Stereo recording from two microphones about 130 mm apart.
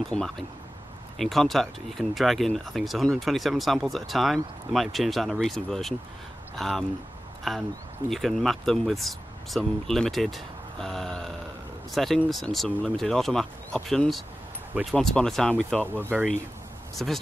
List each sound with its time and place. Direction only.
0.1 s speech: 5° left (ahead or behind)
15.9 s speech: 15° right (ahead or behind)
16.9 s speech: centre (ahead or behind)